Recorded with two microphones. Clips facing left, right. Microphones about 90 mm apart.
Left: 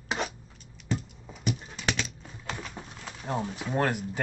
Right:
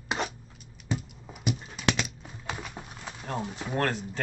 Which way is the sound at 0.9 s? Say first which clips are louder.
Left 1 dB; 5° right (ahead or behind).